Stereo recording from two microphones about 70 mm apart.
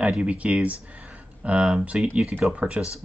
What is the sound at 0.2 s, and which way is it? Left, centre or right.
Speech, centre.